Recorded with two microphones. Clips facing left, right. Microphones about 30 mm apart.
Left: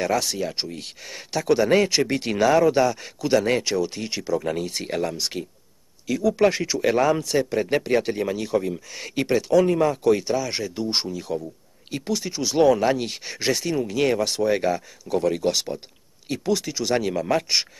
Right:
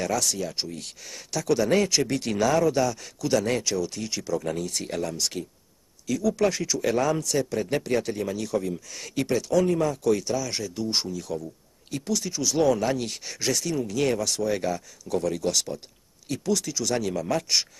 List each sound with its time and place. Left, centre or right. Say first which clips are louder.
0.0 s speech: left 3 dB; left